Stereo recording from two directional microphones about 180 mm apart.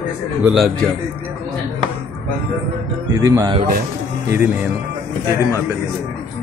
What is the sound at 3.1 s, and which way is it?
Speech, 20° right (ahead or behind).